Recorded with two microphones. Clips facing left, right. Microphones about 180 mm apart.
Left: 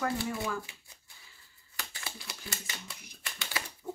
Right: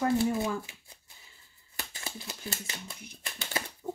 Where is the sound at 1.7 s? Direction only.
20° right (ahead or behind).